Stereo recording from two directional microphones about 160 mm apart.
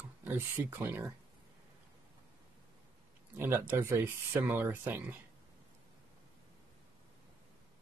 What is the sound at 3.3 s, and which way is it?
Speech, 15° right (ahead or behind).